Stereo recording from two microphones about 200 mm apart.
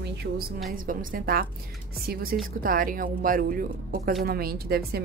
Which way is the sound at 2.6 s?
45° right (ahead or behind).